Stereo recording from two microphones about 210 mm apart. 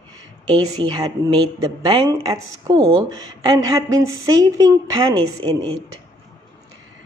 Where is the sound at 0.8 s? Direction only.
20° right (ahead or behind).